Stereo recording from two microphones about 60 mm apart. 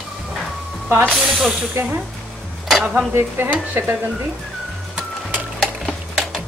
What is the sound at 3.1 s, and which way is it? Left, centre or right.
Speech, right.